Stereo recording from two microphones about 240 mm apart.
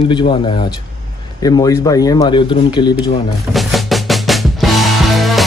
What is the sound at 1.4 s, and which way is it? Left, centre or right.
Speech, centre.